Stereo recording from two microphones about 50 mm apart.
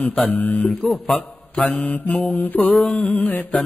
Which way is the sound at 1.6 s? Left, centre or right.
Left.